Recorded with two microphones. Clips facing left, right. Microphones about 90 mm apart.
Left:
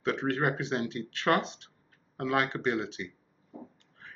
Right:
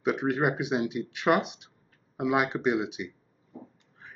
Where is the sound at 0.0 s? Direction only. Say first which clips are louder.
Right 3 dB; 15° right (ahead or behind).